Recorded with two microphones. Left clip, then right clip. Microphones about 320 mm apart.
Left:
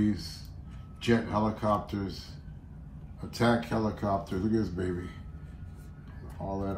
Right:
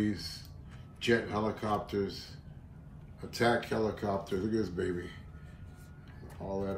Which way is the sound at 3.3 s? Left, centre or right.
Centre.